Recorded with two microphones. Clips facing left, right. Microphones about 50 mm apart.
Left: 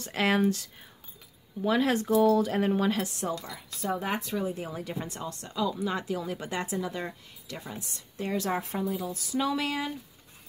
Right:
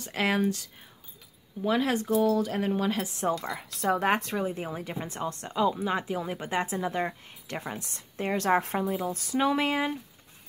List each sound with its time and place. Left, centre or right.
0.0 s speech: centre
3.2 s a woman's voice: right
3.8 s speech: right
4.4 s a woman's voice: right
4.6 s speech: centre
5.8 s a woman's voice: right